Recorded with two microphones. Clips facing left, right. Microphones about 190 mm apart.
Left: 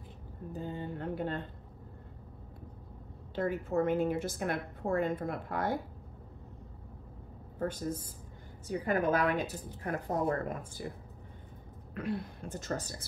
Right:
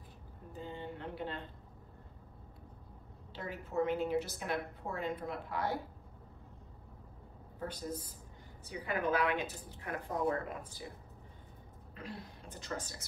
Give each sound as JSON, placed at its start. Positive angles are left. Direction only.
{"t": 0.5, "sound": "a sound", "side_deg": 45}
{"t": 3.3, "sound": "a woman's voice", "side_deg": 50}
{"t": 7.5, "sound": "a woman's voice", "side_deg": 50}
{"t": 11.9, "sound": "a woman's voice", "side_deg": 55}